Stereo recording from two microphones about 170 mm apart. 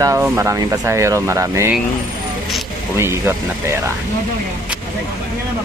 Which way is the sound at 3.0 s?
15° right (ahead or behind).